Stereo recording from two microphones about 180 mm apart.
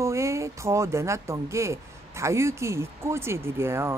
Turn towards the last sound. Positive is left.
turn(degrees=-15)  # may be behind; listen again after turning